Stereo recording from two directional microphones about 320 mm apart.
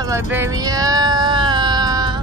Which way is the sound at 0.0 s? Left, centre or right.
Centre.